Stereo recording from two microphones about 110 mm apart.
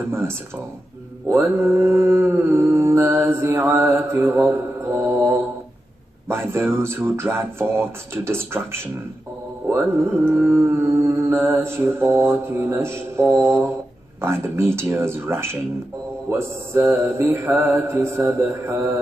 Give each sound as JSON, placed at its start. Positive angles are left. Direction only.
{"t": 0.1, "sound": "mantra", "side_deg": -25}
{"t": 6.2, "sound": "mantra", "side_deg": -20}